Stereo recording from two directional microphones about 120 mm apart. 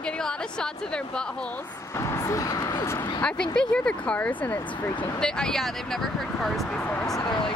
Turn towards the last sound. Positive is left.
turn(degrees=35)  # may be behind; listen again after turning